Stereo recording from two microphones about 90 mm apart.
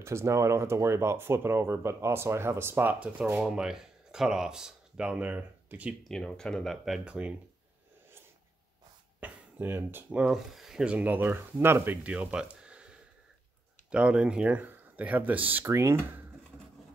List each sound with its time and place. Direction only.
0.0 s speech: 30° right (ahead or behind)
6.0 s speech: 5° left (ahead or behind)
9.2 s a sound: 25° right (ahead or behind)
10.0 s speech: 10° right (ahead or behind)
12.1 s a sound: 10° right (ahead or behind)
13.8 s speech: 10° right (ahead or behind)
15.6 s speech: 30° right (ahead or behind)